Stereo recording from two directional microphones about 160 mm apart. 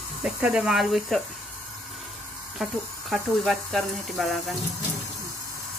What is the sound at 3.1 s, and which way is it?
Speech, centre (ahead or behind).